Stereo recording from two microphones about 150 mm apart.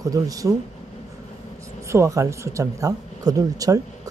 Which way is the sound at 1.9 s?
20° right (ahead or behind).